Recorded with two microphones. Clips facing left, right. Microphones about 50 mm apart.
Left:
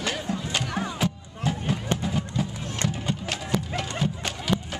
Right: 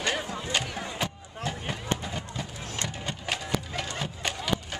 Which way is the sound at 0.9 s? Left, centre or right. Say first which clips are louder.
Left 4 dB; centre.